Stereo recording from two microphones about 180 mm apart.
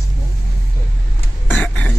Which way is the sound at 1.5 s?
10° left (ahead or behind).